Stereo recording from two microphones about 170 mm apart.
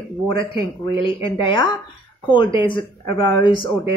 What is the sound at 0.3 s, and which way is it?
Speech, 30° left (ahead or behind).